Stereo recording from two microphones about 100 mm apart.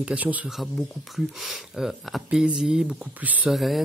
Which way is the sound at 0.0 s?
15° right (ahead or behind).